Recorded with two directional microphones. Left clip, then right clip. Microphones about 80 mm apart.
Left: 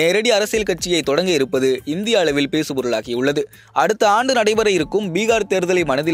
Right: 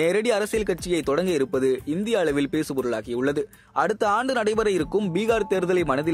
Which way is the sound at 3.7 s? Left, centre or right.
Left.